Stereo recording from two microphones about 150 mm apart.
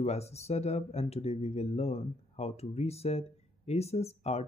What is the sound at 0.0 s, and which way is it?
Speech, 45° left (ahead or behind).